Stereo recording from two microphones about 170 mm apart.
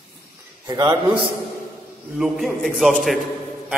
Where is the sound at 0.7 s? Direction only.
20° right (ahead or behind).